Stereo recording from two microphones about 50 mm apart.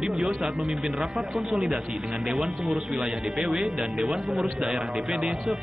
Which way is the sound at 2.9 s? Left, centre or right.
Centre.